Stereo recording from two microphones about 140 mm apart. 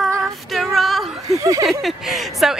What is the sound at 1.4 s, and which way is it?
Speech, 25° right (ahead or behind).